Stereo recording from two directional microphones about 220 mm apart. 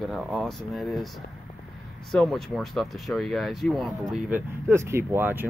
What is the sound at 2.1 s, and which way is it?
Speech, centre (ahead or behind).